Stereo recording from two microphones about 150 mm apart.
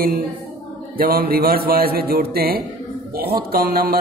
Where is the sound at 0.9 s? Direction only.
85° right.